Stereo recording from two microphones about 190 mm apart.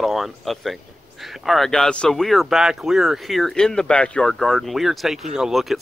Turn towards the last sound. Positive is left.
turn(degrees=0)  # may be behind; listen again after turning